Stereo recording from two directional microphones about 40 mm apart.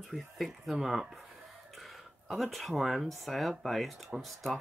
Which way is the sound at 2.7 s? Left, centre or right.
Centre.